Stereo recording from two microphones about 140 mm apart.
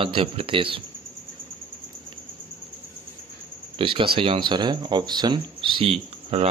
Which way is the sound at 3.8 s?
40° right (ahead or behind).